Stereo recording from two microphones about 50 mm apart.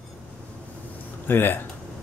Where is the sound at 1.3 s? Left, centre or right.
Left.